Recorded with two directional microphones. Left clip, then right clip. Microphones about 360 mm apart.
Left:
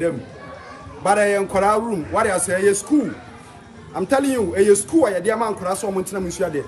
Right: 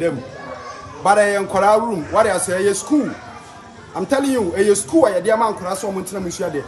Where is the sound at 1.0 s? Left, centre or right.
Centre.